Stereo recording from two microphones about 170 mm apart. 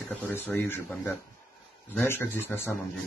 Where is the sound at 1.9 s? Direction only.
10° left (ahead or behind).